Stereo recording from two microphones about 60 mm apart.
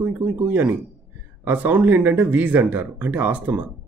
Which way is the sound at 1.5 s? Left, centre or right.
Right.